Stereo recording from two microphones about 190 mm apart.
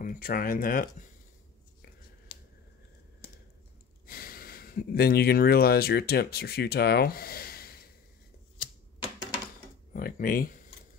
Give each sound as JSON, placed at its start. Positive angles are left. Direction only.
{"t": 0.0, "sound": "speech", "side_deg": 50}
{"t": 4.0, "sound": "speech", "side_deg": 50}
{"t": 8.5, "sound": "typewriter", "side_deg": 25}
{"t": 9.9, "sound": "speech", "side_deg": 50}